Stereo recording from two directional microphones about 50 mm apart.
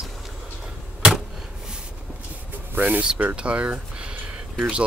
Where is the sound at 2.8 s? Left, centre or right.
Right.